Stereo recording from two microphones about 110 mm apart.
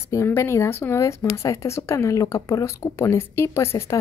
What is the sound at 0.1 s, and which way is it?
A woman's voice, 25° left (ahead or behind).